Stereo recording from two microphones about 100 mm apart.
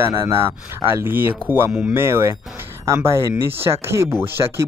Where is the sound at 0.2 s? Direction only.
25° right (ahead or behind).